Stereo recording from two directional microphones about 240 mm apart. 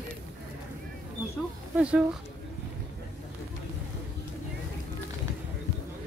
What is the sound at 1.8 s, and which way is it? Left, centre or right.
Speech, centre.